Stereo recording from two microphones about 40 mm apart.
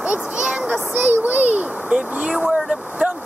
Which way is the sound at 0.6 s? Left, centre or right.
Right.